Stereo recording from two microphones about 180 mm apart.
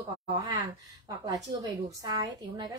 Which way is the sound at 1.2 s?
20° right (ahead or behind).